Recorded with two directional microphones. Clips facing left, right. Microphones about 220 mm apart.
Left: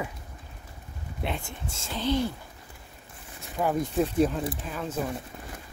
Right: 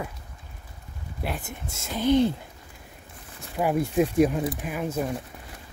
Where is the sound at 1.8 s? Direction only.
15° right (ahead or behind).